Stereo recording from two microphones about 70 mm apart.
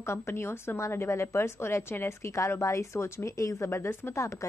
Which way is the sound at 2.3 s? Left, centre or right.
Left.